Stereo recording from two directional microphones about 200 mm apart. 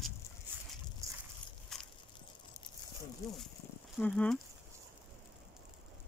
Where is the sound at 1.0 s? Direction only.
15° right (ahead or behind).